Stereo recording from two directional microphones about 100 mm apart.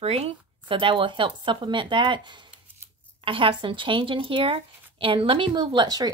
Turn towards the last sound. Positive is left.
turn(degrees=-40)  # may be behind; listen again after turning